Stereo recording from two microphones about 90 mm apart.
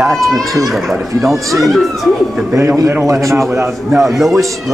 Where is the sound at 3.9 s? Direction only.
Centre (ahead or behind).